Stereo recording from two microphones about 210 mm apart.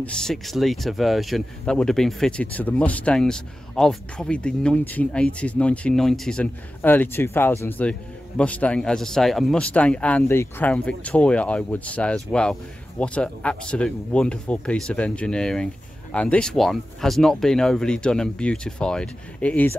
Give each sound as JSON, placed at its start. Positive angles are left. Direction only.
{"t": 0.0, "sound": "speech", "side_deg": 5}